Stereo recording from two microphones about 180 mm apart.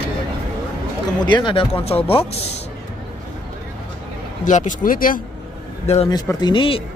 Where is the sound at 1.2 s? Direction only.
25° left (ahead or behind).